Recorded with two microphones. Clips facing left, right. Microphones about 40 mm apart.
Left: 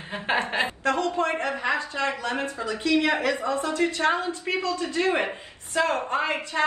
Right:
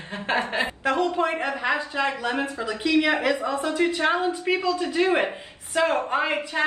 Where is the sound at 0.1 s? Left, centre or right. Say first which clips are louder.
Even; centre.